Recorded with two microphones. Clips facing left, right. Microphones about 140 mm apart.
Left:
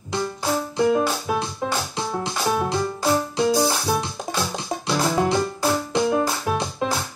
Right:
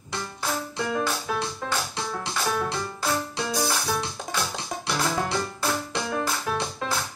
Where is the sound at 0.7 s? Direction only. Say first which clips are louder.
Left 9 dB; 25° left (ahead or behind).